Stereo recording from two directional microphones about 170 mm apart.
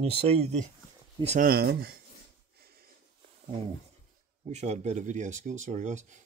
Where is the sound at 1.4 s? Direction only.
60° right (ahead or behind).